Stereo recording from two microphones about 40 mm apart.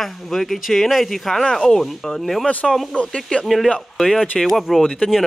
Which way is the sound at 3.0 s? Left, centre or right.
Left.